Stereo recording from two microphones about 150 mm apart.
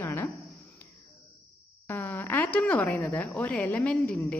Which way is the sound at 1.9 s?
15° left (ahead or behind).